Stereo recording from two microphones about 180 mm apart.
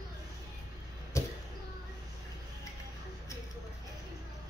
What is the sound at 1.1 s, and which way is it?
Arrow, 15° left (ahead or behind).